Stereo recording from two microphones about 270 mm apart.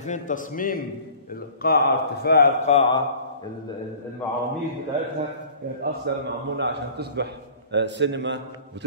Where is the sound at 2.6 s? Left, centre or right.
Left.